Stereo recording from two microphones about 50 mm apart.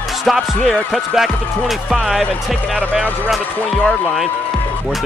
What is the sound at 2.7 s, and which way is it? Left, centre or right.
Speech, right.